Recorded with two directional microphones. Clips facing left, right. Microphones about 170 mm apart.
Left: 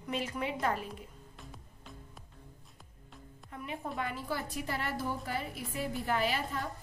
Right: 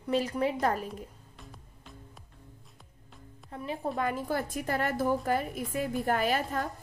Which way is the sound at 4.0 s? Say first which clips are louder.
Right 6 dB; 45° right (ahead or behind).